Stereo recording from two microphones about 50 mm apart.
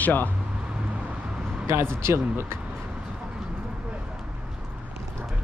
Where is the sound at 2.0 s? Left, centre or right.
Right.